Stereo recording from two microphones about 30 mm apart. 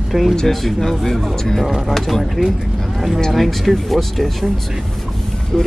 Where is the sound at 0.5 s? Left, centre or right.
Centre.